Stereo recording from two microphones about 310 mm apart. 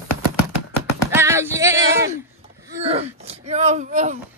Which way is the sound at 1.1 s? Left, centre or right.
Centre.